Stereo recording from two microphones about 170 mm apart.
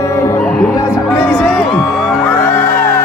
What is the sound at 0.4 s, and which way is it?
Music, 5° left (ahead or behind).